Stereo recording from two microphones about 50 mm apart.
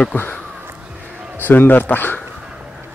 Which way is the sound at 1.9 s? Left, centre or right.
Left.